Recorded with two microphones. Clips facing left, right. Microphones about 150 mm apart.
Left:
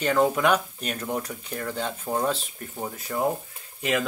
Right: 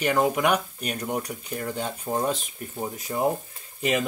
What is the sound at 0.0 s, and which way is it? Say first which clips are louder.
Speech: left 1 dB; 10° right (ahead or behind).